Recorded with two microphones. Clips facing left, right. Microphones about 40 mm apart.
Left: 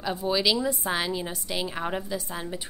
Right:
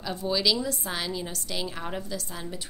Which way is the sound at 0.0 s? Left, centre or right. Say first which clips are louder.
Left 2 dB; centre.